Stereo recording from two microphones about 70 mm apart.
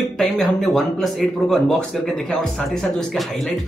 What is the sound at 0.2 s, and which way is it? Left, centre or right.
Speech, centre.